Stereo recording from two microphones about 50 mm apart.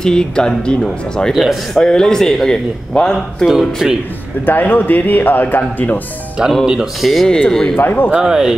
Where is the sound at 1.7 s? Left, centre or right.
Centre.